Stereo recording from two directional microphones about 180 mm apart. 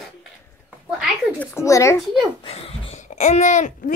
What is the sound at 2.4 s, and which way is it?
Speech, 35° left (ahead or behind).